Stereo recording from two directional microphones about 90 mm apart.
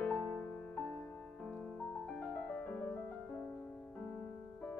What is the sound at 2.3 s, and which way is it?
Music, 15° left (ahead or behind).